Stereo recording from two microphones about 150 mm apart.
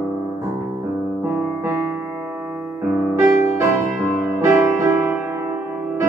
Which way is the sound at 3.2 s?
20° right (ahead or behind).